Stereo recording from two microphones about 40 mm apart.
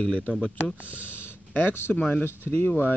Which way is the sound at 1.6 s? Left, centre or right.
Left.